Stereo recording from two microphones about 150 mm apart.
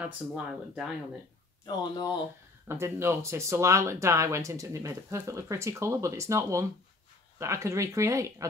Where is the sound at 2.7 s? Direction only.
15° right (ahead or behind).